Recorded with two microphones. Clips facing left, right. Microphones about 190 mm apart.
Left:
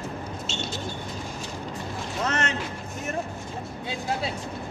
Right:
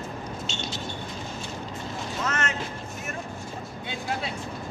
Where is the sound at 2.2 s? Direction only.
35° left (ahead or behind).